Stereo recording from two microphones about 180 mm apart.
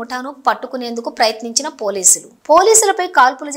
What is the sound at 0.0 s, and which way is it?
Speech, centre (ahead or behind).